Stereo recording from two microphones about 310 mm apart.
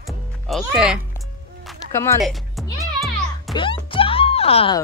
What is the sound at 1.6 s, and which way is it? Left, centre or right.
Music, centre.